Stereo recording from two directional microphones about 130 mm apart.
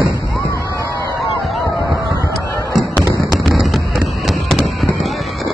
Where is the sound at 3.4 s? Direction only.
Centre (ahead or behind).